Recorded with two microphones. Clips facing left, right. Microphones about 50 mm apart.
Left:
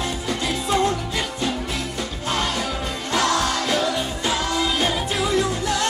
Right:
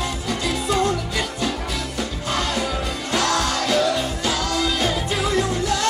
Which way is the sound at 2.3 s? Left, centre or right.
Left.